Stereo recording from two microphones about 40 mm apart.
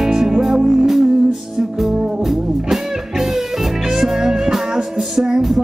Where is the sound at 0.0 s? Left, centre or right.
Centre.